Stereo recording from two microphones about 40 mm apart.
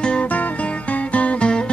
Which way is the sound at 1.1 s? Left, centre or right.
Left.